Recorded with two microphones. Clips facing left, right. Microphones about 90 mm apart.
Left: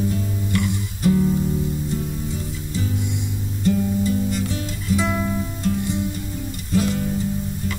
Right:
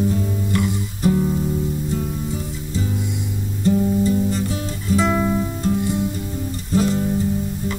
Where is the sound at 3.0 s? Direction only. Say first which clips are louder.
Right 1 dB; centre (ahead or behind).